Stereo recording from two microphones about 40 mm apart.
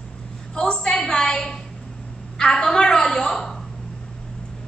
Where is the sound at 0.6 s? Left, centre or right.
Left.